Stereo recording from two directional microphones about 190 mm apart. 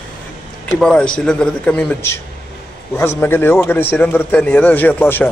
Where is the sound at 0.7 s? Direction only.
5° left (ahead or behind).